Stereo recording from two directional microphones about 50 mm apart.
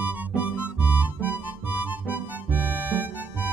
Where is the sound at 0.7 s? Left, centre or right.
Right.